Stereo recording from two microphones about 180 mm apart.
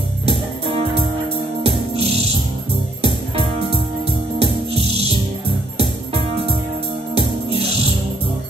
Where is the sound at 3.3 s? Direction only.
30° right (ahead or behind).